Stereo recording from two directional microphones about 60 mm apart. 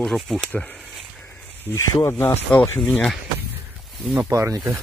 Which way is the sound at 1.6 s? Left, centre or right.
Left.